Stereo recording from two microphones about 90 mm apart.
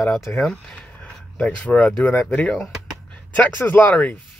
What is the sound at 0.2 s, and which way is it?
Speech, 5° left (ahead or behind).